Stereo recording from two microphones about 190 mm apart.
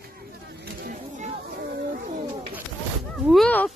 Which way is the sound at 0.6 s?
45° right (ahead or behind).